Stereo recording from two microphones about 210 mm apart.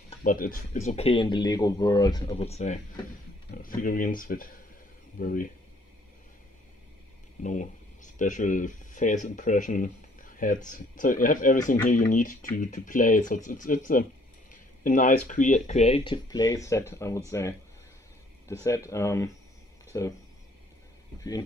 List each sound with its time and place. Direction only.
0.2 s speech: 40° left (ahead or behind)
7.4 s speech: 35° left (ahead or behind); by 20.2 s 15° left (ahead or behind)